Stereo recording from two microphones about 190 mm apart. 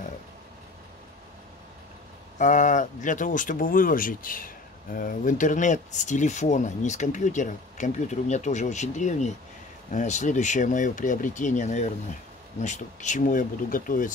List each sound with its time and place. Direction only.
2.3 s speech: 40° left (ahead or behind)